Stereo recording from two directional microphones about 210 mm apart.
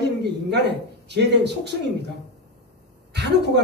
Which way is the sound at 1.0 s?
55° right (ahead or behind).